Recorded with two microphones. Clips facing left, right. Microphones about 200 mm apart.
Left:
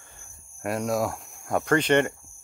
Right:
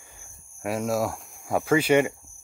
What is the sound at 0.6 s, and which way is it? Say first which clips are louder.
Speech: even; centre (ahead or behind).